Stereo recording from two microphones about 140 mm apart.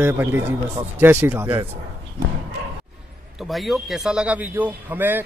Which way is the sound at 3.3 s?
Centre (ahead or behind).